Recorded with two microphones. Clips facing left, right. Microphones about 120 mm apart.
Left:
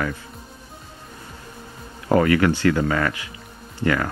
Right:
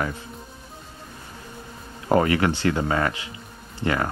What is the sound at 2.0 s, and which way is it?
Speech, 25° right (ahead or behind).